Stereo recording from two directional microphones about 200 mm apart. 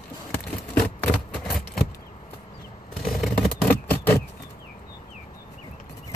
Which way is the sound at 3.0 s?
Centre (ahead or behind).